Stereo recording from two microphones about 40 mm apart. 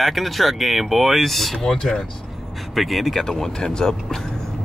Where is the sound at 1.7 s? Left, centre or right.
Centre.